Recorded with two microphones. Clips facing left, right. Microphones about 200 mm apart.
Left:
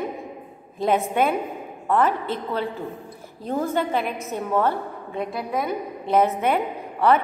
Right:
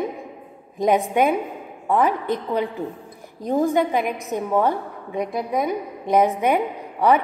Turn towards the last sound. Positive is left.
turn(degrees=-15)  # may be behind; listen again after turning